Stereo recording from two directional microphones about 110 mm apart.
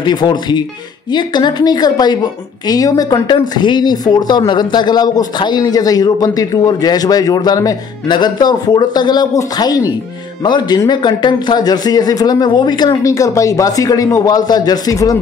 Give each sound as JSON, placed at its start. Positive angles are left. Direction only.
{"t": 0.0, "sound": "speech", "side_deg": 40}